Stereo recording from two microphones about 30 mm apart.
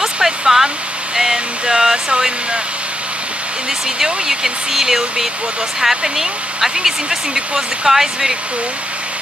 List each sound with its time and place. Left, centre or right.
0.0 s waterfall: centre
1.1 s a sound: centre
4.0 s speech: centre